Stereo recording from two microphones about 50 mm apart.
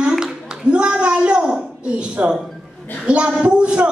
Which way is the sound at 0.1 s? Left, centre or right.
Centre.